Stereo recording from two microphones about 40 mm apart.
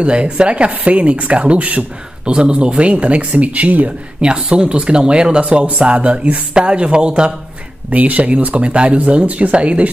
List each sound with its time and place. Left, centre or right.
0.0 s speech: right
4.2 s speech: right
7.9 s speech: right